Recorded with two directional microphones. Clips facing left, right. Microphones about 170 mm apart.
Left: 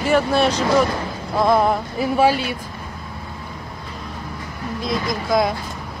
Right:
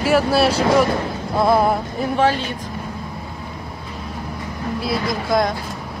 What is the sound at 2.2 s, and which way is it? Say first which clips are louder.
Speech: left 1 dB; 10° left (ahead or behind).